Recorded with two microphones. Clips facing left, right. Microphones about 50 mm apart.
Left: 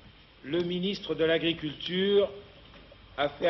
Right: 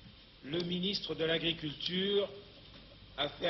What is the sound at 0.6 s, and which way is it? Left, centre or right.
Speech, left.